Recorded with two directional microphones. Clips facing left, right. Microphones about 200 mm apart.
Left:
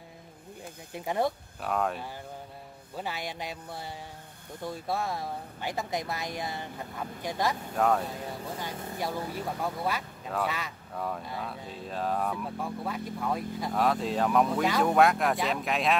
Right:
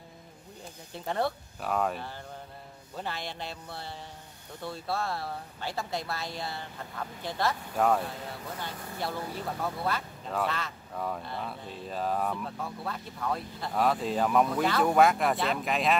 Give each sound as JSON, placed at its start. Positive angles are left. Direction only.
{"t": 0.9, "sound": "speech", "side_deg": 10}
{"t": 1.6, "sound": "speech", "side_deg": 0}
{"t": 3.0, "sound": "speech", "side_deg": 10}
{"t": 7.7, "sound": "speech", "side_deg": 0}
{"t": 8.5, "sound": "speech", "side_deg": 15}
{"t": 12.4, "sound": "speech", "side_deg": 10}
{"t": 13.7, "sound": "speech", "side_deg": 0}